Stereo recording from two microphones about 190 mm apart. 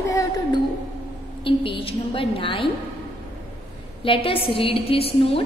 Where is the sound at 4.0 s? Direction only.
30° left (ahead or behind).